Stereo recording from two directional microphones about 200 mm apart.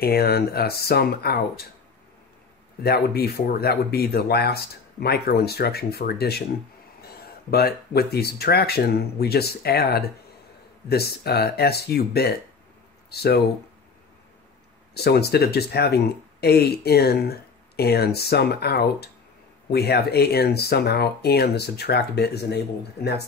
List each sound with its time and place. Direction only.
0.0 s speech: 50° left (ahead or behind)
2.8 s speech: 50° left (ahead or behind)
15.0 s speech: 55° left (ahead or behind)